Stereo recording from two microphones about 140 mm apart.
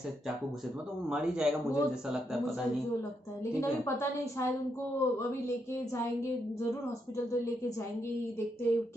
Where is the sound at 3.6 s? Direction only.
20° left (ahead or behind).